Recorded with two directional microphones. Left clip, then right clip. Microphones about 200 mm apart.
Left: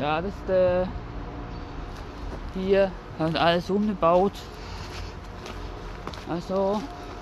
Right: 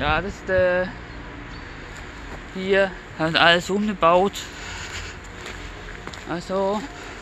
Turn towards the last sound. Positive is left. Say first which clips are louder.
# right 2 dB
turn(degrees=-15)  # may be behind; listen again after turning